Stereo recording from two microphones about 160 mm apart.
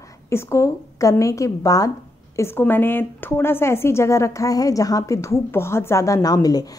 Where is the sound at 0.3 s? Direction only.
15° left (ahead or behind).